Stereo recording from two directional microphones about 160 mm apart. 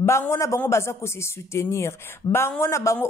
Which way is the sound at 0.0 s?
15° left (ahead or behind).